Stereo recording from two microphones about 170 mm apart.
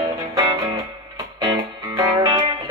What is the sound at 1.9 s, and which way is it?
Music, 20° right (ahead or behind).